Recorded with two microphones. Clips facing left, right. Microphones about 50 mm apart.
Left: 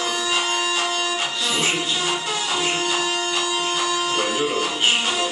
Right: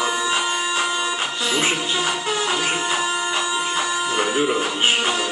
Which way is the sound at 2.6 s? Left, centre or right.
Right.